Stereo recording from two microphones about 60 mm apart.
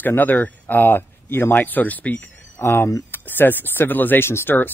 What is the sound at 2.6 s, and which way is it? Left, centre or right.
Speech, left.